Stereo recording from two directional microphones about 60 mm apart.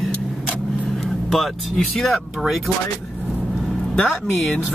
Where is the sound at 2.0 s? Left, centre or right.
Centre.